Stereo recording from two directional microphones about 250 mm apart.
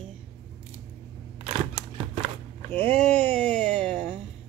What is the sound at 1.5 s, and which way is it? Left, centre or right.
Single-lens reflex camera, centre.